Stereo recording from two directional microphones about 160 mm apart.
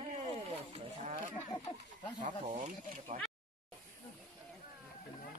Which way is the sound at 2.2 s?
50° right (ahead or behind).